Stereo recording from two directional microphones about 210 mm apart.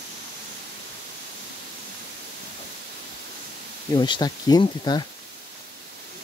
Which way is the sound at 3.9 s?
20° left (ahead or behind).